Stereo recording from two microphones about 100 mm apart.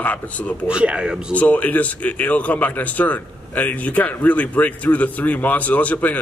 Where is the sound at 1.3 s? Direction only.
15° left (ahead or behind).